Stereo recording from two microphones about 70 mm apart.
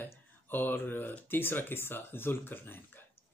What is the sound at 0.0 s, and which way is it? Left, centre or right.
Speech, left.